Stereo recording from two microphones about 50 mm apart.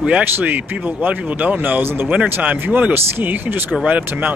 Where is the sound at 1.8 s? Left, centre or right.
Right.